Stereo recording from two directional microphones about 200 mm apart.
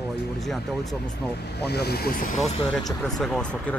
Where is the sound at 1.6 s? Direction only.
55° left (ahead or behind).